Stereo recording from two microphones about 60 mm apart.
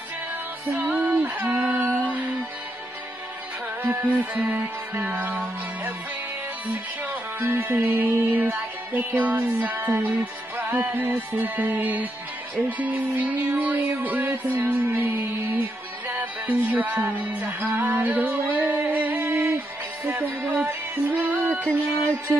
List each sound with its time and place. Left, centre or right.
0.7 s music: right
1.5 s a sound: centre
3.8 s music: right
7.3 s music: right